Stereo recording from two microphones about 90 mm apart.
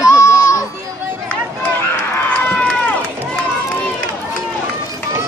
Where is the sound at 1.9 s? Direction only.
25° left (ahead or behind).